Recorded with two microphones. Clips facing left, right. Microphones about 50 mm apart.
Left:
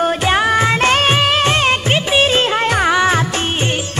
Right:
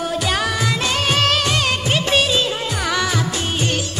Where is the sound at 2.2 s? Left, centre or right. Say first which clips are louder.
Left 6 dB; left.